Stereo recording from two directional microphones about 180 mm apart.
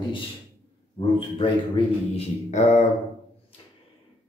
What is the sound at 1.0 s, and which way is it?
A man's voice, 30° left (ahead or behind).